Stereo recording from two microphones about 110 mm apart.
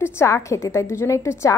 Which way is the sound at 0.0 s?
25° left (ahead or behind).